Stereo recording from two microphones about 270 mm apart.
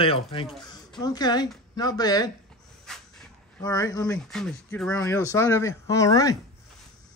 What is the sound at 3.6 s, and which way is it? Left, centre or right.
Speech, centre.